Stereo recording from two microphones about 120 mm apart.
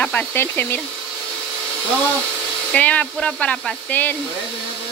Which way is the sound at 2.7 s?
10° left (ahead or behind).